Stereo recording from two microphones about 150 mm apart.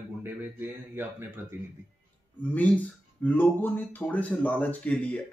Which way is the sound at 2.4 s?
10° left (ahead or behind).